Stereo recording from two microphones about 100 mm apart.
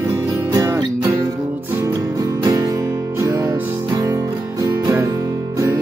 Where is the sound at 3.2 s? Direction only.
30° right (ahead or behind).